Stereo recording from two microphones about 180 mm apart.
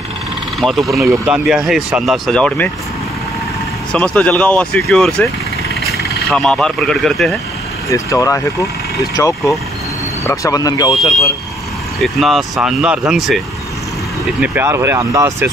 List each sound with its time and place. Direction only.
0.6 s speech: centre (ahead or behind)
1.1 s speech: 15° right (ahead or behind)
1.4 s speech: centre (ahead or behind)
3.9 s speech: 5° left (ahead or behind)
6.3 s speech: 5° left (ahead or behind)
7.9 s speech: 20° left (ahead or behind)
12.0 s speech: centre (ahead or behind)
14.4 s speech: 10° right (ahead or behind)